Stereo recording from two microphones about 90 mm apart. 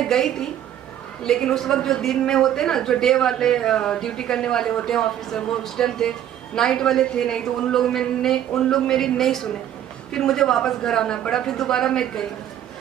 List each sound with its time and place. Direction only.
0.1 s a woman's voice: 5° left (ahead or behind)